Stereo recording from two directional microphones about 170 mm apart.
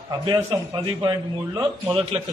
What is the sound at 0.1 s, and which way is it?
A man's voice, 25° right (ahead or behind).